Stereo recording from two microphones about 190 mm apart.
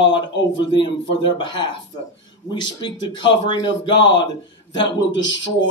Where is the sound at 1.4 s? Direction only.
25° left (ahead or behind).